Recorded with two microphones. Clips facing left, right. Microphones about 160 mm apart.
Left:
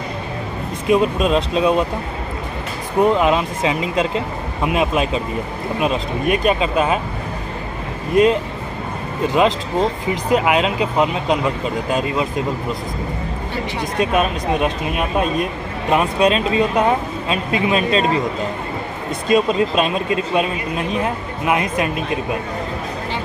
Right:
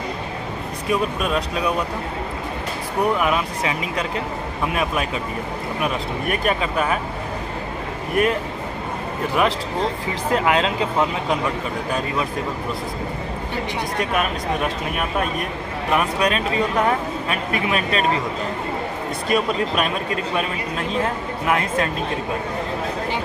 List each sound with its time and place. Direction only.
0.8 s speech: 25° left (ahead or behind)
3.0 s speech: 20° left (ahead or behind)
9.3 s speech: 20° left (ahead or behind)
13.9 s speech: 20° left (ahead or behind)
19.2 s speech: 20° left (ahead or behind)